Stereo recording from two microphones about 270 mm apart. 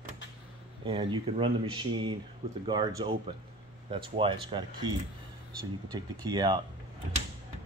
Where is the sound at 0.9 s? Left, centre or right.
Centre.